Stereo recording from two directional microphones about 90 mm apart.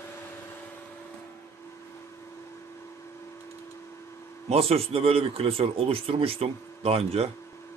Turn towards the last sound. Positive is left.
turn(degrees=-90)